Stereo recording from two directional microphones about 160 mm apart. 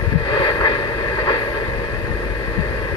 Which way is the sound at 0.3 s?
30° left (ahead or behind).